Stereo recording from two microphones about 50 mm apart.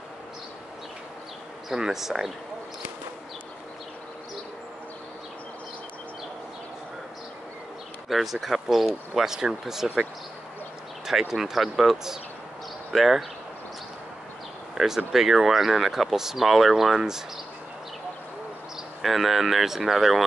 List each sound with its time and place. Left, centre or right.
1.7 s speech: centre
8.1 s speech: centre
11.1 s speech: centre
14.8 s speech: centre
19.0 s speech: centre